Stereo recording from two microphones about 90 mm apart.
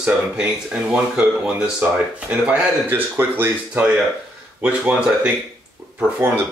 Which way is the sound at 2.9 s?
25° right (ahead or behind).